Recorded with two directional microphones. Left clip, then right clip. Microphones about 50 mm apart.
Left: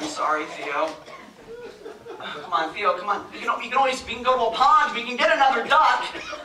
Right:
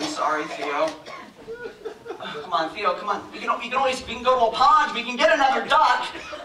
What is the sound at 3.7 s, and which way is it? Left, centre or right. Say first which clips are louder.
Speech: left 4 dB; right.